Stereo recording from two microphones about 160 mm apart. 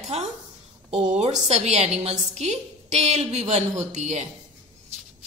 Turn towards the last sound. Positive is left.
turn(degrees=-45)  # may be behind; listen again after turning